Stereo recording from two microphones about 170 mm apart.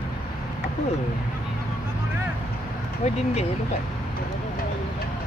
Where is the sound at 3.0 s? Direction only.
40° left (ahead or behind).